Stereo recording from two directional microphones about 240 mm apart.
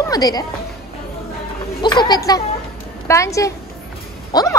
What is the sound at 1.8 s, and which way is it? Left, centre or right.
A woman's voice, centre.